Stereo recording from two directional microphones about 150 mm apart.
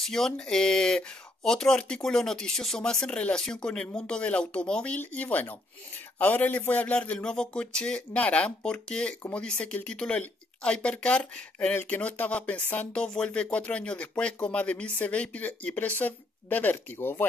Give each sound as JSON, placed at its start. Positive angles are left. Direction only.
{"t": 0.0, "sound": "speech", "side_deg": 5}